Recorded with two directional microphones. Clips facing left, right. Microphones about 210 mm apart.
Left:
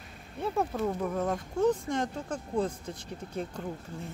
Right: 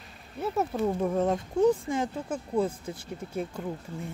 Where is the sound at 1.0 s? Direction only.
25° right (ahead or behind).